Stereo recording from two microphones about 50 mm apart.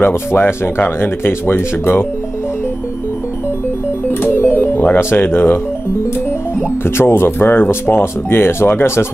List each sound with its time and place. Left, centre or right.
0.0 s speech: left
4.1 s speech: left
7.0 s speech: left
8.0 s speech: left